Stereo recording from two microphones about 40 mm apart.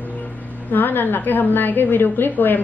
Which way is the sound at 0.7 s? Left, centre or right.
Left.